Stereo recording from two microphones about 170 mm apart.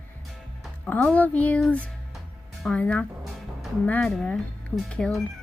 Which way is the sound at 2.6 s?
10° left (ahead or behind).